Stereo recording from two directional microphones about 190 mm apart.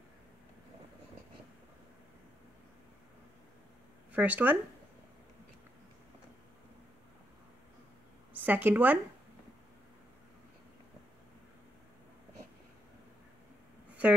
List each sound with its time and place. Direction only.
4.1 s speech: 10° right (ahead or behind)
8.3 s a woman's voice: 10° right (ahead or behind)